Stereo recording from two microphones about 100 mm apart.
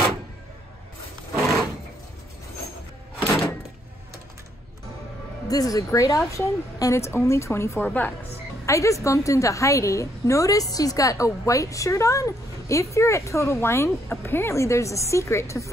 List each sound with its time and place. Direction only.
1.4 s a sound: centre (ahead or behind)
5.5 s speech: 35° left (ahead or behind)
7.8 s a woman's voice: 15° left (ahead or behind)
8.6 s a woman's voice: 30° left (ahead or behind)